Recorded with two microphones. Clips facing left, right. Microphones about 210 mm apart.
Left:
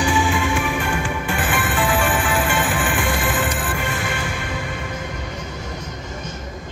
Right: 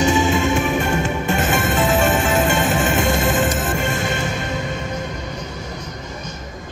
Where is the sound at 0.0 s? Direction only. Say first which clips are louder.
Right 3 dB; 25° right (ahead or behind).